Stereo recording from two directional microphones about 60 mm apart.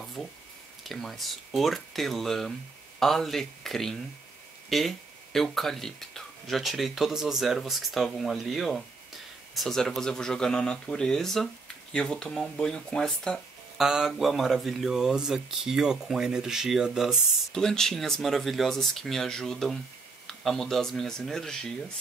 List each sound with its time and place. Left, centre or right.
0.2 s speech: centre
13.7 s speech: centre
17.5 s speech: centre